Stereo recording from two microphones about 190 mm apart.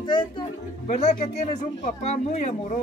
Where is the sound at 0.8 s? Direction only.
35° left (ahead or behind).